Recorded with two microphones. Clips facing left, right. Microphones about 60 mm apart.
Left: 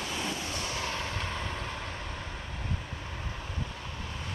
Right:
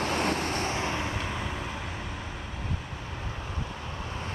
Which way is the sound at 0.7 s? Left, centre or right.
Right.